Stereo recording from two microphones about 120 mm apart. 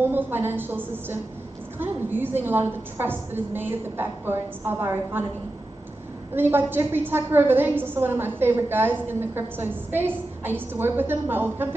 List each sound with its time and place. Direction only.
0.0 s a woman's voice: 20° right (ahead or behind)
6.3 s a woman's voice: 15° right (ahead or behind)